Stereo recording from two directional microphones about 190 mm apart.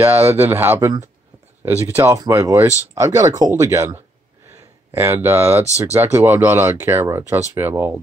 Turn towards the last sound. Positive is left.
turn(degrees=-10)  # may be behind; listen again after turning